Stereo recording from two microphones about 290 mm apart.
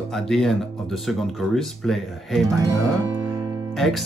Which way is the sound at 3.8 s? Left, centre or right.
Centre.